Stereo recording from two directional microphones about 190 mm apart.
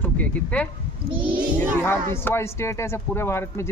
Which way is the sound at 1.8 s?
10° left (ahead or behind).